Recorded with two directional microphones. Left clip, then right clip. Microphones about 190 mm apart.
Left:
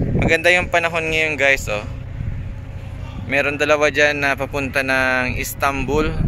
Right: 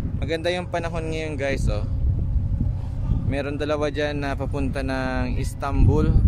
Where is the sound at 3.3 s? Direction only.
Centre (ahead or behind).